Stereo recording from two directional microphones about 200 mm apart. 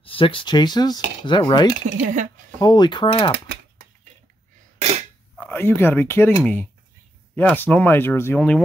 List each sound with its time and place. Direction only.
0.0 s speech: 25° left (ahead or behind)
1.9 s speech: 35° right (ahead or behind)
2.6 s speech: 20° left (ahead or behind)
5.3 s speech: 5° left (ahead or behind)